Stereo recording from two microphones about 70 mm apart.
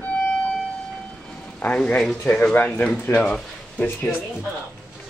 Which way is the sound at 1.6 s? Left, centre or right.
Centre.